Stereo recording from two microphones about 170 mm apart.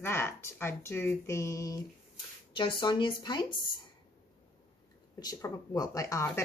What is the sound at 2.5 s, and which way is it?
Speech, 30° left (ahead or behind).